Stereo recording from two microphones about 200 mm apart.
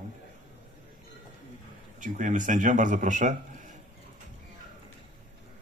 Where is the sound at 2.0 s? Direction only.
40° right (ahead or behind).